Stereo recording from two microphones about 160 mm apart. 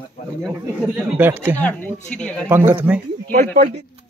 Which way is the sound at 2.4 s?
15° right (ahead or behind).